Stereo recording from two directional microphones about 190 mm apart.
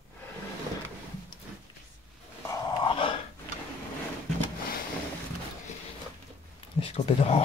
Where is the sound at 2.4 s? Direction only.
25° left (ahead or behind).